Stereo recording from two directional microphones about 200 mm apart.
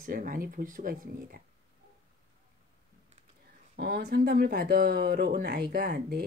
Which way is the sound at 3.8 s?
50° right (ahead or behind).